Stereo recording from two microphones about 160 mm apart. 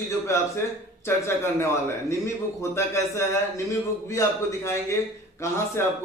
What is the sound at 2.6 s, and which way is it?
A man's voice, 15° left (ahead or behind).